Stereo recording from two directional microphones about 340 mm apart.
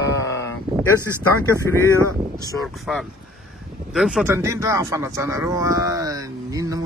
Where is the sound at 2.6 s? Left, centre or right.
Centre.